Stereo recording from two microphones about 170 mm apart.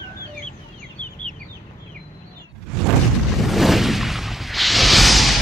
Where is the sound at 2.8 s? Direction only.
Centre (ahead or behind).